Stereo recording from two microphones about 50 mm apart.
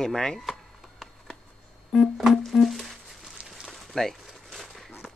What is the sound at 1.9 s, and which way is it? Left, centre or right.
Music, centre.